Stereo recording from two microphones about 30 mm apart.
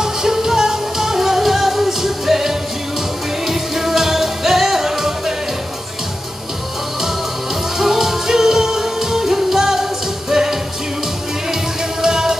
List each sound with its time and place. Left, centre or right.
0.0 s music: centre
7.8 s music: centre
12.0 s music: centre